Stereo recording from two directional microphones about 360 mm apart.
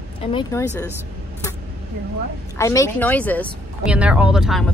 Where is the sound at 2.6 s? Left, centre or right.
Centre.